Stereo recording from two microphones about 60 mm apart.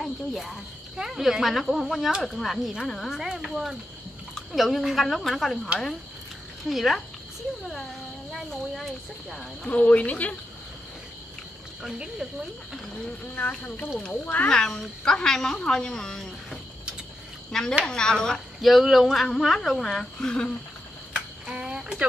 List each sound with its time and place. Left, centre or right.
0.0 s speech: centre
4.5 s speech: centre
6.7 s speech: centre
8.5 s speech: centre
9.7 s a woman's voice: left
11.8 s speech: centre
13.2 s a woman's voice: left
15.0 s a woman's voice: centre
17.5 s a woman's voice: centre
18.6 s speech: centre
21.1 s a sound: centre